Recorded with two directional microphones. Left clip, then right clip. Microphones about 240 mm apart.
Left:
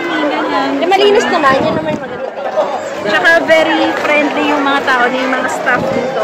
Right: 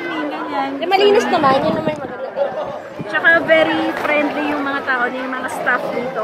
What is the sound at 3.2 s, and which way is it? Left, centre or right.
A man's voice, centre.